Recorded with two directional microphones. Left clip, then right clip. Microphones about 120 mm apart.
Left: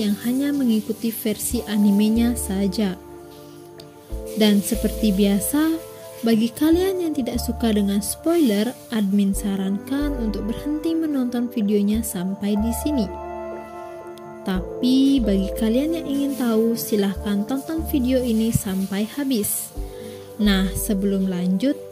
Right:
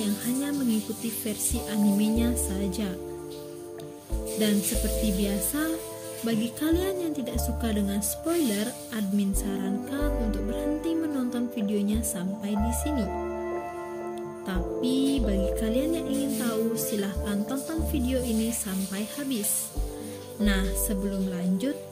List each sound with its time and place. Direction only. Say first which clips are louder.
0.0 s speech: left 7 dB; 55° left (ahead or behind)
4.4 s speech: left 8 dB; 55° left (ahead or behind)
14.4 s speech: left 6 dB; 55° left (ahead or behind)
20.4 s speech: left 6 dB; 60° left (ahead or behind)